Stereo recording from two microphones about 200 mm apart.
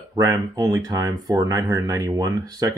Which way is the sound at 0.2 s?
15° right (ahead or behind).